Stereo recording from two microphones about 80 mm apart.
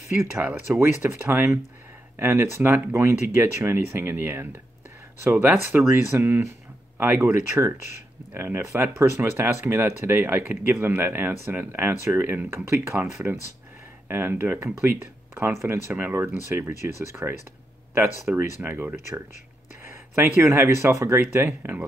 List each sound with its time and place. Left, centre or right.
0.7 s speech: right
18.3 s speech: centre